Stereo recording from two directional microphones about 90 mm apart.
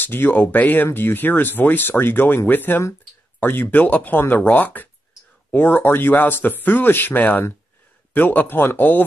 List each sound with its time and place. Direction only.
0.0 s speech: 20° left (ahead or behind)